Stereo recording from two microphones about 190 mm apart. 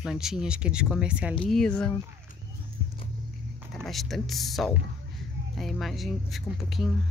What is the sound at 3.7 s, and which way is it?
Speech, centre (ahead or behind).